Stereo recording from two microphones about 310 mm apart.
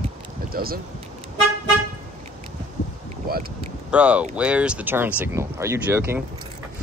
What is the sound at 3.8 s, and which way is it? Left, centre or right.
Speech, centre.